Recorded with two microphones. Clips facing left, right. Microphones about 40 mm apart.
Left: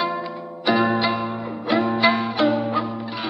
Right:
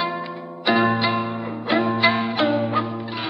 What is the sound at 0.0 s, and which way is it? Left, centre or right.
Zither, centre.